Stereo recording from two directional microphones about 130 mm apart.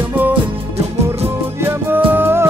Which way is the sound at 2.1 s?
15° right (ahead or behind).